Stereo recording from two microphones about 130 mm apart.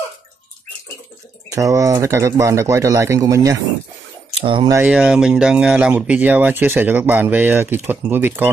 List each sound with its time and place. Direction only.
1.5 s speech: 25° right (ahead or behind)
4.4 s speech: 40° right (ahead or behind)
4.8 s speech: 5° right (ahead or behind)